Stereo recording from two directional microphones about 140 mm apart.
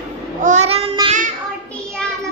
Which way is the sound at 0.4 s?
55° right (ahead or behind).